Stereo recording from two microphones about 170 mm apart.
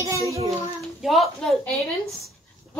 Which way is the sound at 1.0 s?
Centre (ahead or behind).